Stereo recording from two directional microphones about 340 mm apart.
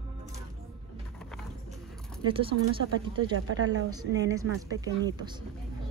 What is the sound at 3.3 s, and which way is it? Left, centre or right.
Speech, right.